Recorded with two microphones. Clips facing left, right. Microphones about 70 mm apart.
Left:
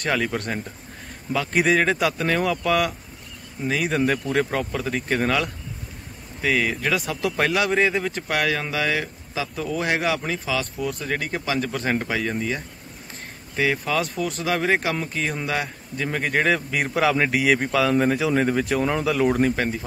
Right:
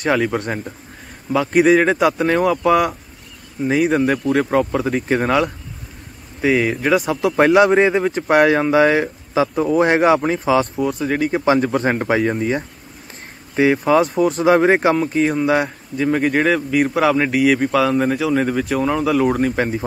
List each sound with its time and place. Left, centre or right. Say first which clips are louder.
0.0 s speech: right 6 dB; centre
3.8 s a man's voice: right 5 dB; centre
7.3 s a man's voice: right 9 dB; right
10.9 s speech: right 8 dB; centre
11.5 s speech: right 9 dB; right
11.9 s a man's voice: right 7 dB; right
13.6 s a man's voice: right 9 dB; right
16.0 s a man's voice: right 7 dB; centre
19.5 s speech: right 5 dB; centre